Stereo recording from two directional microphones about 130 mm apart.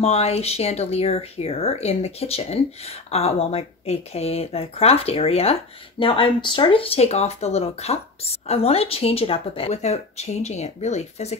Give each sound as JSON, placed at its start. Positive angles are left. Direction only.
{"t": 0.0, "sound": "speech", "side_deg": 55}